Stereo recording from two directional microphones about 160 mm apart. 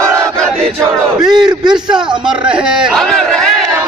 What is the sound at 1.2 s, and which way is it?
Crowd, 5° right (ahead or behind).